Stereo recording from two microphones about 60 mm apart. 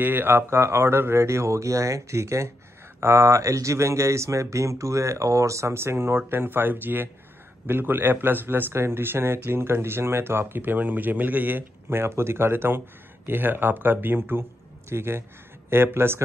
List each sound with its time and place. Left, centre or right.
0.0 s a man's voice: right